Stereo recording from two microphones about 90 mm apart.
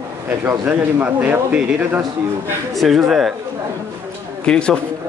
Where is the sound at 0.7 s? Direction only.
20° right (ahead or behind).